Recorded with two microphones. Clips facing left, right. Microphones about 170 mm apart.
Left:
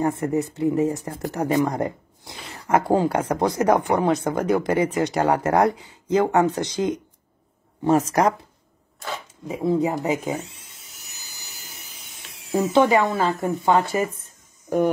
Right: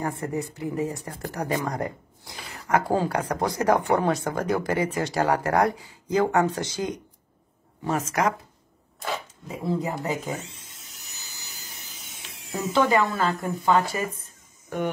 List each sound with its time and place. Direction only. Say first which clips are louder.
0.0 s speech: left 6 dB; 25° left (ahead or behind)
7.8 s speech: left 6 dB; 35° left (ahead or behind)
9.5 s speech: left 6 dB; 20° left (ahead or behind)
12.0 s a sound: right 1 dB; centre (ahead or behind)
12.9 s speech: left 3 dB; 20° left (ahead or behind)